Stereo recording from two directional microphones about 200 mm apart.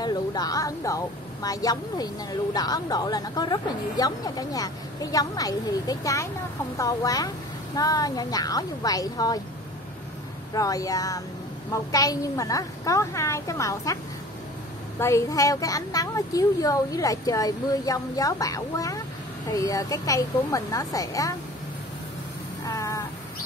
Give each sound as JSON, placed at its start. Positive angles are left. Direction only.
{"t": 0.0, "sound": "a woman's voice", "side_deg": 20}
{"t": 10.5, "sound": "a woman's voice", "side_deg": 15}
{"t": 15.0, "sound": "a woman's voice", "side_deg": 15}
{"t": 22.7, "sound": "cat", "side_deg": 15}